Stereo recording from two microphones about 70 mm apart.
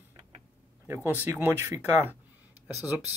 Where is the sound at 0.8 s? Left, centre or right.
Right.